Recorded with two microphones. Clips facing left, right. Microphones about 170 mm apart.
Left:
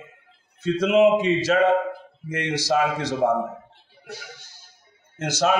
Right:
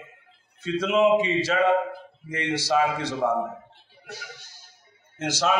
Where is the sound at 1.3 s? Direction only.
45° left (ahead or behind).